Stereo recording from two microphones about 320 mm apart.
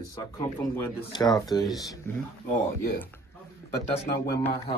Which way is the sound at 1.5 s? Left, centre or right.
Centre.